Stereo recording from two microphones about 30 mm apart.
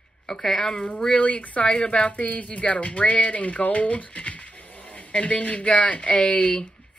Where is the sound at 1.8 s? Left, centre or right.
Left.